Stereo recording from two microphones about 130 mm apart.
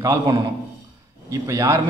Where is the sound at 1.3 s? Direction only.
25° right (ahead or behind).